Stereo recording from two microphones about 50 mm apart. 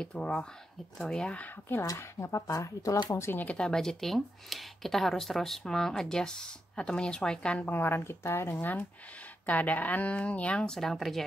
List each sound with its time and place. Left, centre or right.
0.0 s speech: left
1.7 s speech: left
3.5 s speech: centre
7.7 s speech: left
9.5 s speech: left
10.6 s speech: centre